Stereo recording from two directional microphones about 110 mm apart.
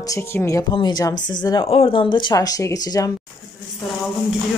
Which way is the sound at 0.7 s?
40° left (ahead or behind).